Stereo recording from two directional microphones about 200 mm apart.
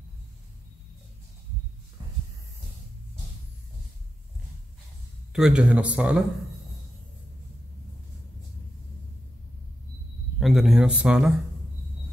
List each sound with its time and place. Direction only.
2.0 s heart sounds: 20° right (ahead or behind)
5.3 s speech: 5° right (ahead or behind)
10.4 s speech: centre (ahead or behind)